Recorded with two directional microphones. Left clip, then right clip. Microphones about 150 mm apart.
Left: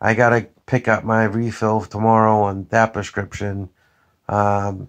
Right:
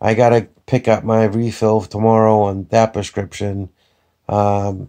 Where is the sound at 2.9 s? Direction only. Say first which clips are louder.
Right 3 dB; 25° right (ahead or behind).